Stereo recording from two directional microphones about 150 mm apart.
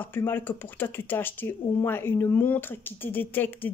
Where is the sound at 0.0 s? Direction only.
15° left (ahead or behind).